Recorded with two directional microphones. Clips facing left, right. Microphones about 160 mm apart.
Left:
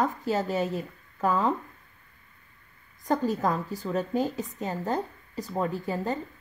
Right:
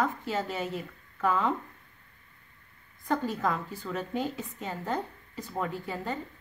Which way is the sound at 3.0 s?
40° left (ahead or behind).